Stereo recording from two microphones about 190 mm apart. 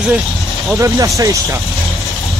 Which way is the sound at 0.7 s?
15° right (ahead or behind).